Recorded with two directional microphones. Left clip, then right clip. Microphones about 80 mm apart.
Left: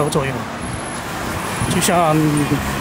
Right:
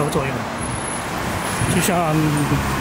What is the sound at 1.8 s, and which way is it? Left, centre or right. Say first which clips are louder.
Speech: left 5 dB; centre.